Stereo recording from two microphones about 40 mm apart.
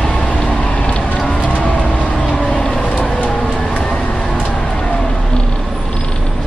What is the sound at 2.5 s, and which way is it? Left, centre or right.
Vehicle, centre.